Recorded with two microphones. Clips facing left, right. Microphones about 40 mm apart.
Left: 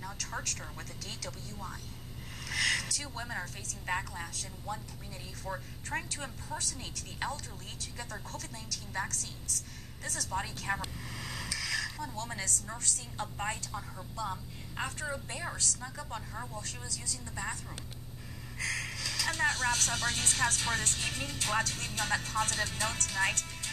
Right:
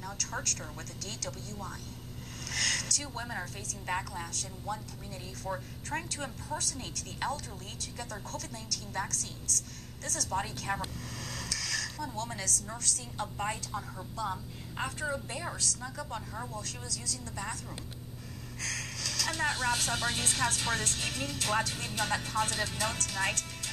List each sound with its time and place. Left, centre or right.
0.0 s a woman's voice: centre
2.4 s a sound: centre
3.0 s a woman's voice: centre
10.5 s a sound: centre
12.7 s a woman's voice: centre
13.2 s a woman's voice: centre
16.1 s a woman's voice: centre
16.5 s a woman's voice: left
17.4 s a woman's voice: centre
18.6 s a sound: centre
19.7 s a woman's voice: centre
21.5 s speech: centre
22.8 s speech: centre